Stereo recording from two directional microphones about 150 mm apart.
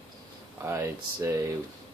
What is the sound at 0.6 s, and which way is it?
Speech, 20° right (ahead or behind).